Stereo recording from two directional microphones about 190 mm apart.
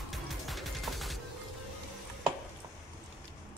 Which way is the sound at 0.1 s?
Centre (ahead or behind).